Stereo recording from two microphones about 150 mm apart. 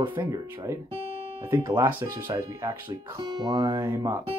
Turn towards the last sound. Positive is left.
turn(degrees=-25)  # may be behind; listen again after turning